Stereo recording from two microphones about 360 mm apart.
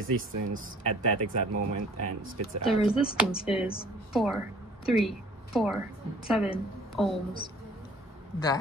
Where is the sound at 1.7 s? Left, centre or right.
Right.